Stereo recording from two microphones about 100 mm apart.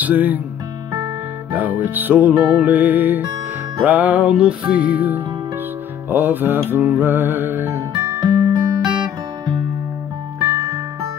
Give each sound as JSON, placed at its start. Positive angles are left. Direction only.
{"t": 0.0, "sound": "music", "side_deg": -15}
{"t": 1.5, "sound": "music", "side_deg": -15}
{"t": 8.0, "sound": "music", "side_deg": -45}
{"t": 10.5, "sound": "music", "side_deg": -30}